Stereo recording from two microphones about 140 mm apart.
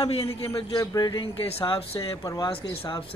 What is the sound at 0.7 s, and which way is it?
Speech, 30° left (ahead or behind).